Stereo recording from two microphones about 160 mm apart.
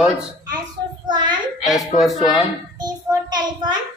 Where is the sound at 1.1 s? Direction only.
30° right (ahead or behind).